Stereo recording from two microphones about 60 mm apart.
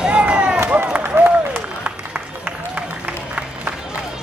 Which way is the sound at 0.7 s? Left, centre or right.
Right.